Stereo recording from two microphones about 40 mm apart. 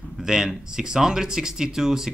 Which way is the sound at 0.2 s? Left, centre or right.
Centre.